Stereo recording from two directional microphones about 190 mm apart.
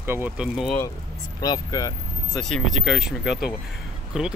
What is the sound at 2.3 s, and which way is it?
Speech, centre (ahead or behind).